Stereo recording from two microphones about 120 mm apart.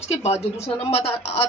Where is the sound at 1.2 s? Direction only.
60° left (ahead or behind).